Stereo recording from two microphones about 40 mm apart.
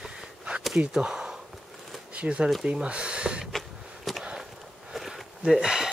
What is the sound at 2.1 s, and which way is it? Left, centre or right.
Speech, right.